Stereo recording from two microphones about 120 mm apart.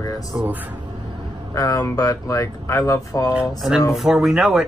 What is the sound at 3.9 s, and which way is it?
Speech, 5° right (ahead or behind).